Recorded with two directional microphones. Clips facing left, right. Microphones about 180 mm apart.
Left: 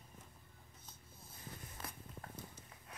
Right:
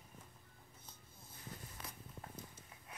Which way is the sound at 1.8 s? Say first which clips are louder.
Left 5 dB; 60° left (ahead or behind).